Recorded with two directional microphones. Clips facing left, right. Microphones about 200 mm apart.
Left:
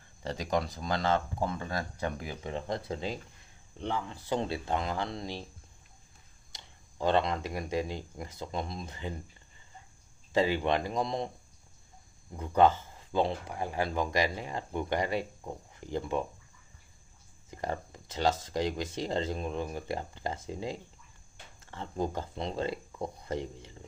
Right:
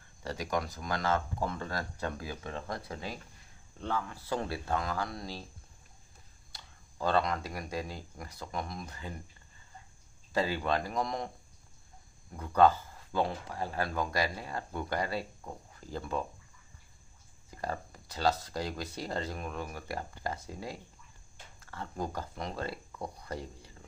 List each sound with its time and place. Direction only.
0.2 s speech: 25° left (ahead or behind)
6.5 s speech: 20° left (ahead or behind)
10.3 s speech: 20° left (ahead or behind)
12.3 s speech: 20° left (ahead or behind)
17.5 s speech: 20° left (ahead or behind)